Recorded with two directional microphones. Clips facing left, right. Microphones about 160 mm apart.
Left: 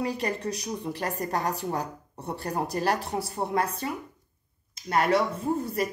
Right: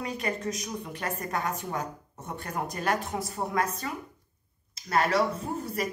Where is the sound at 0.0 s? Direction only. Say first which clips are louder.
Left 3 dB; 35° left (ahead or behind).